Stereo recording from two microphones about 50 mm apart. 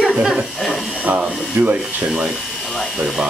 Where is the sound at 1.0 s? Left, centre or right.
Right.